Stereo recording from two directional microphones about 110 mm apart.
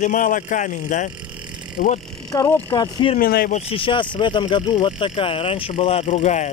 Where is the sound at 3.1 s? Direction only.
60° left (ahead or behind).